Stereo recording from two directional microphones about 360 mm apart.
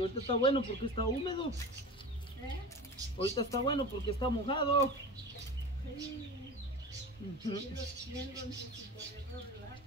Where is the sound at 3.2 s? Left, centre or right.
Centre.